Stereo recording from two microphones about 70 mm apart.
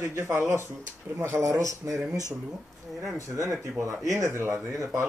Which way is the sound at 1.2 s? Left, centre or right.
Right.